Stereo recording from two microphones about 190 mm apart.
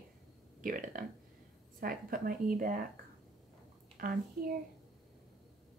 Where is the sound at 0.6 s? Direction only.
45° right (ahead or behind).